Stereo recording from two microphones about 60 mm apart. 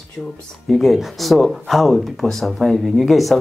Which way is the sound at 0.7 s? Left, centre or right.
Centre.